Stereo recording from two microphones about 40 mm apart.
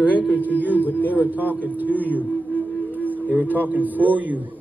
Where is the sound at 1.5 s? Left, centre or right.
Right.